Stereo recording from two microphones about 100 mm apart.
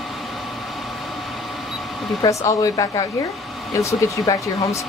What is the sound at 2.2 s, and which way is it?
Speech, 35° left (ahead or behind).